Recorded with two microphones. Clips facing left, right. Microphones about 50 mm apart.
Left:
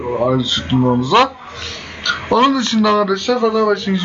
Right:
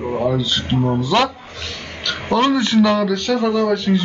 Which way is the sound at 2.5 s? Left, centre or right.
Centre.